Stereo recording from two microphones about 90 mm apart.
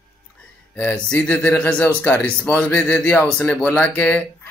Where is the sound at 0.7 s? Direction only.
15° left (ahead or behind).